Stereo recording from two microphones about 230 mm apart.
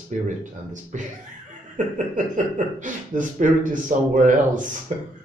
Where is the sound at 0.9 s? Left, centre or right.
Right.